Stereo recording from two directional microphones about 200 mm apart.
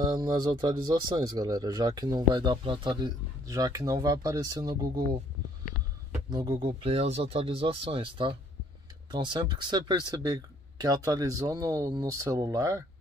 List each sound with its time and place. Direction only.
0.0 s speech: 20° right (ahead or behind)
6.1 s speech: 20° right (ahead or behind)